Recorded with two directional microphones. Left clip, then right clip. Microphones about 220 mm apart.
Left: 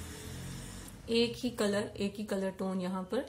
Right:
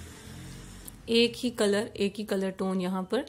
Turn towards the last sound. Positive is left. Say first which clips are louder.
# right 5 dB
turn(degrees=-35)  # may be behind; listen again after turning